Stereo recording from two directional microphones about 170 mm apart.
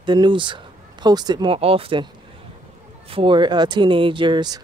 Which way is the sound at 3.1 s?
30° right (ahead or behind).